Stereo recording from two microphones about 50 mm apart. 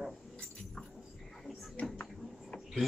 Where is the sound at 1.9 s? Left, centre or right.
Left.